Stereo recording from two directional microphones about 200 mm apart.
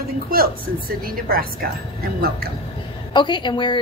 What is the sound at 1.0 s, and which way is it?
Speech, 45° right (ahead or behind).